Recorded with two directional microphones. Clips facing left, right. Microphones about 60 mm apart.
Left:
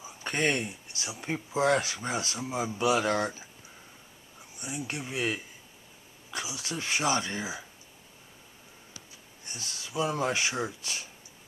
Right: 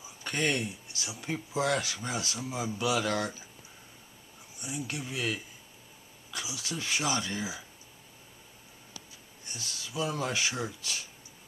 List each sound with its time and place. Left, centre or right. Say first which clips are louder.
0.0 s speech: left 2 dB; left
4.6 s speech: left 1 dB; left
9.5 s speech: left 1 dB; left